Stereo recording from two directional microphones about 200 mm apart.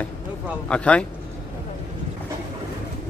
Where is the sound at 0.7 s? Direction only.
5° left (ahead or behind).